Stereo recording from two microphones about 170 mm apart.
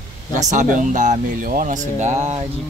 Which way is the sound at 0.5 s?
45° right (ahead or behind).